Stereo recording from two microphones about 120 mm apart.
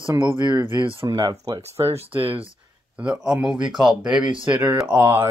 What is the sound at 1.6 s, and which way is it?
Speech, 60° right (ahead or behind).